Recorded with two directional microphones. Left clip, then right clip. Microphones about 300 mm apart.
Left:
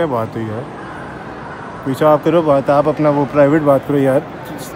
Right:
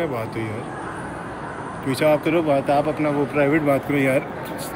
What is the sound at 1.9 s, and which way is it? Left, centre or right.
Speech, centre.